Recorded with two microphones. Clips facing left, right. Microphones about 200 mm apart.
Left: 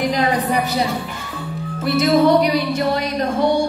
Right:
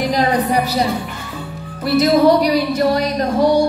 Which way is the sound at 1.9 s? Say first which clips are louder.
Right 2 dB; 35° right (ahead or behind).